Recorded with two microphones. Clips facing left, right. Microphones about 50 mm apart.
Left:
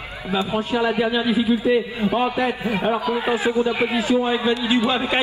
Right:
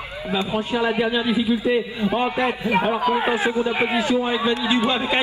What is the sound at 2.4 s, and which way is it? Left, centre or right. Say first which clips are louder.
Speech: right 1 dB; right.